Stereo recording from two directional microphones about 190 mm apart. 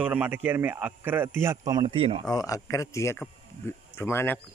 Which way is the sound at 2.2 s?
20° left (ahead or behind).